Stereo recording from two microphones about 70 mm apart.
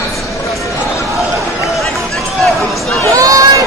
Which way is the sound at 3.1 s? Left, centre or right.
Right.